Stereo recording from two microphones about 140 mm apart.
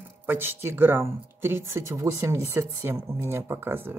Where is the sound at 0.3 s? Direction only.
15° right (ahead or behind).